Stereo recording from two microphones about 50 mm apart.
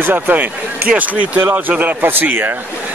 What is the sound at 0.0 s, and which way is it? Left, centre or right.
Speech, right.